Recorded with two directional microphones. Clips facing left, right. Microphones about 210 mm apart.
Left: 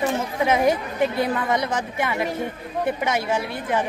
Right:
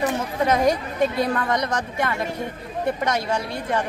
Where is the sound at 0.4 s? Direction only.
5° left (ahead or behind).